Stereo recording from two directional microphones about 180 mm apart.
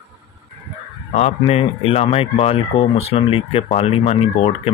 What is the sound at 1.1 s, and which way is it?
Speech, 35° left (ahead or behind).